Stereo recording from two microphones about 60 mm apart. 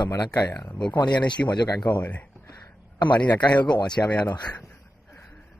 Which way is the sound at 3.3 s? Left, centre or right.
Centre.